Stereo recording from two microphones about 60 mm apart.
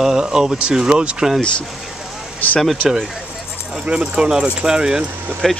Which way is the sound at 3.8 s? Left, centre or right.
Centre.